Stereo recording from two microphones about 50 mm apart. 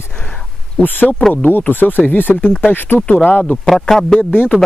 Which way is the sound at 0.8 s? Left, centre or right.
Left.